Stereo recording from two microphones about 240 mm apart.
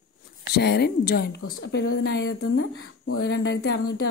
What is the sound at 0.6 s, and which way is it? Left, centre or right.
Speech, left.